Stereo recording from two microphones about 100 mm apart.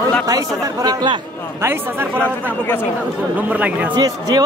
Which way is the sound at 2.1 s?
15° left (ahead or behind).